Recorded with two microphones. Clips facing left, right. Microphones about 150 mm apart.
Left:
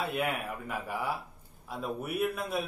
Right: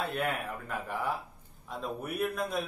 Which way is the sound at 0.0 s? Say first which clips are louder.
Left 1 dB; 5° left (ahead or behind).